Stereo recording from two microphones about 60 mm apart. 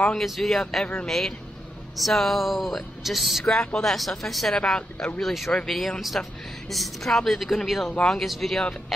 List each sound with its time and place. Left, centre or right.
0.1 s speech: centre
3.4 s speech: centre
4.6 s speech: centre
5.2 s speech: centre